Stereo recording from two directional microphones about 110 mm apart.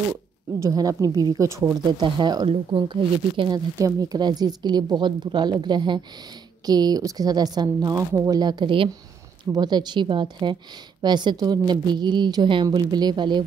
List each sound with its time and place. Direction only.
0.6 s speech: 30° right (ahead or behind)
1.8 s a woman's voice: 45° right (ahead or behind)
3.5 s speech: 35° right (ahead or behind); by 8.9 s 50° right (ahead or behind)
9.4 s a woman's voice: 40° right (ahead or behind)